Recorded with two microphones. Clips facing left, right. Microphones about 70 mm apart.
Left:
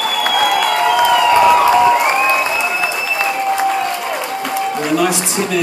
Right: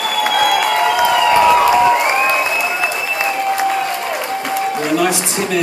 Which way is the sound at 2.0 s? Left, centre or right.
Centre.